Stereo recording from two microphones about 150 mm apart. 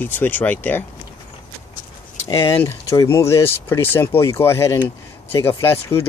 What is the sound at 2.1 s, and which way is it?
Speech, 15° left (ahead or behind).